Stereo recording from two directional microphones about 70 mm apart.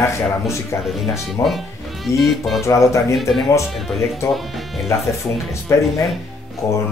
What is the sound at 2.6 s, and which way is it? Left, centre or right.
Speech, left.